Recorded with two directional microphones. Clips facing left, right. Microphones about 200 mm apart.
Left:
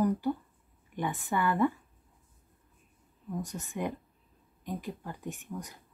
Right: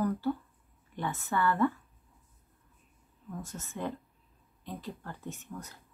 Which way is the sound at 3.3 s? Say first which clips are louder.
Left 4 dB; 15° left (ahead or behind).